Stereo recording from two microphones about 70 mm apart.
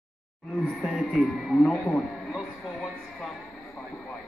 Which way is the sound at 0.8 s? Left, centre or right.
Centre.